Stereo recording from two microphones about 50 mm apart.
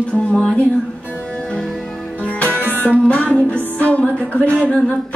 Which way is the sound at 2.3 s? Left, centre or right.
Left.